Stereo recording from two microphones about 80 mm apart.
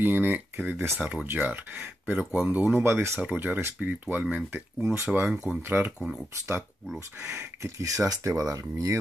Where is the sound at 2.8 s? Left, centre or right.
Right.